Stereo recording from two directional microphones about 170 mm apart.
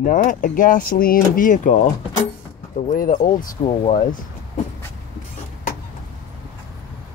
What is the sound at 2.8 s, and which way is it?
Speech, 55° left (ahead or behind).